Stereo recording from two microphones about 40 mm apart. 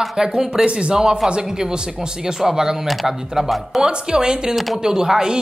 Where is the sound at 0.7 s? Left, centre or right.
Right.